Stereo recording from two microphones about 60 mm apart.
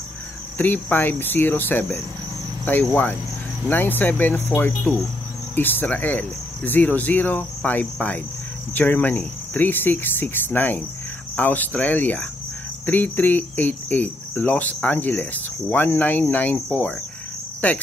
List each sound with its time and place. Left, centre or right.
0.6 s cricket: left